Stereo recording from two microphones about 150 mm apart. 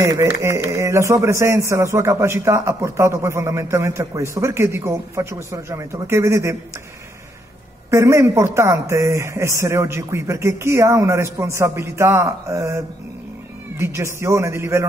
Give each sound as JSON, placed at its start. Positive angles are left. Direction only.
{"t": 0.0, "sound": "a man's voice", "side_deg": -20}
{"t": 7.9, "sound": "a man's voice", "side_deg": -20}